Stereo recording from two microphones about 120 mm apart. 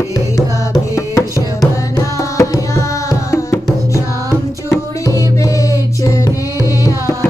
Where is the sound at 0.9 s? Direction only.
25° left (ahead or behind).